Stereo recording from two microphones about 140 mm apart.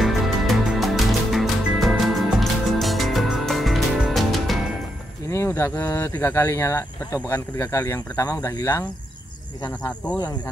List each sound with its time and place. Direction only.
0.0 s music: centre (ahead or behind)
5.3 s speech: 20° left (ahead or behind)
9.7 s speech: 10° left (ahead or behind)